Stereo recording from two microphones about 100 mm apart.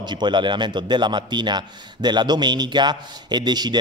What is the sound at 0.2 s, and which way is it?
A man's voice, 50° right (ahead or behind).